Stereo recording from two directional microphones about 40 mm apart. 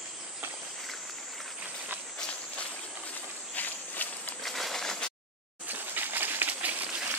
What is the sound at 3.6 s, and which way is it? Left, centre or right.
Walk, left.